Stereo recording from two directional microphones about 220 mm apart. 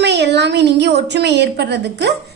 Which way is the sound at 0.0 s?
50° right (ahead or behind).